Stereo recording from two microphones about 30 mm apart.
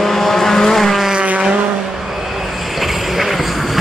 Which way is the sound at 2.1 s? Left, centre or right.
Centre.